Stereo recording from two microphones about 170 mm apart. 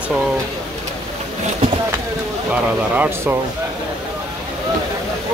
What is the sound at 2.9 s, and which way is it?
Speech, 10° right (ahead or behind).